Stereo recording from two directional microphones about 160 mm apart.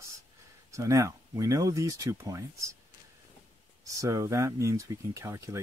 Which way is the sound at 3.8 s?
20° right (ahead or behind).